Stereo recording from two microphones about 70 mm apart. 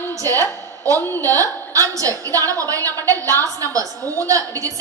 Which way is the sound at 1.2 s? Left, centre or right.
Right.